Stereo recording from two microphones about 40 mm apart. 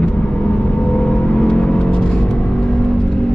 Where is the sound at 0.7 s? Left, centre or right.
Left.